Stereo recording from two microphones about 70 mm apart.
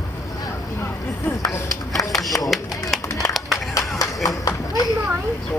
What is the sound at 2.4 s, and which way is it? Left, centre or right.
Music, centre.